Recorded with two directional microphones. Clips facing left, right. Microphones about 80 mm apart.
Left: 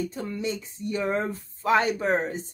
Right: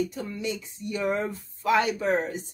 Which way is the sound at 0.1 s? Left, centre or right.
Left.